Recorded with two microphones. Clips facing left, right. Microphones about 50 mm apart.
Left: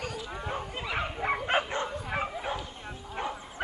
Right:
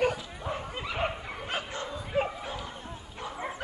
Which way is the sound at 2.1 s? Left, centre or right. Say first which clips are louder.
Right 4 dB; left.